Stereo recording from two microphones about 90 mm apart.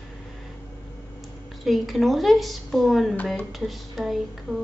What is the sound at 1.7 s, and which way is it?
Speech, centre (ahead or behind).